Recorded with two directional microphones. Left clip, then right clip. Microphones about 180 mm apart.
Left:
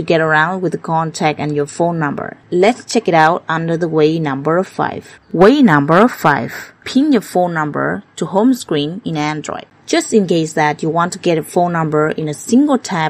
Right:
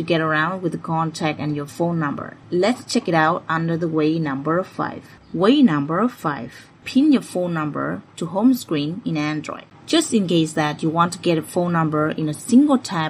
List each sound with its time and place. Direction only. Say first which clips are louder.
0.0 s speech: left 7 dB; 40° left (ahead or behind)